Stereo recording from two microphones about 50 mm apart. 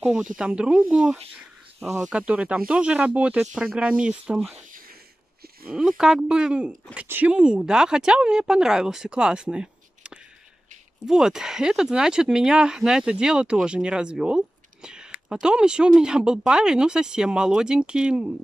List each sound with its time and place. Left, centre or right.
0.0 s speech: centre
5.7 s speech: centre